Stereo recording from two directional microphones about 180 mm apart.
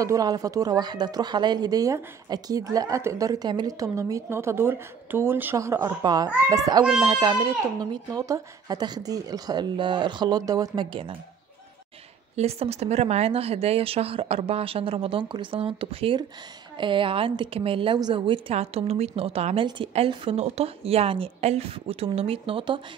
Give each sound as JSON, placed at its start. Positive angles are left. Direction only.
{"t": 0.0, "sound": "speech", "side_deg": -20}
{"t": 12.4, "sound": "a woman's voice", "side_deg": -35}